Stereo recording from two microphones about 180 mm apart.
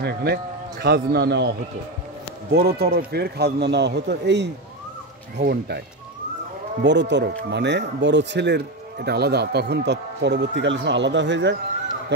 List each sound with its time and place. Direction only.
0.0 s a man's voice: 65° right (ahead or behind)
2.5 s a man's voice: 60° right (ahead or behind)
6.8 s speech: 75° right (ahead or behind)